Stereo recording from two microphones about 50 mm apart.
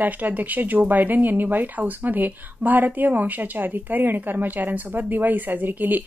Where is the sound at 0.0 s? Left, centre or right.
Right.